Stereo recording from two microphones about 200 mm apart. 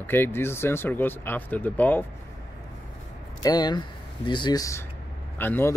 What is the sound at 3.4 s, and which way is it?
Speech, 20° left (ahead or behind).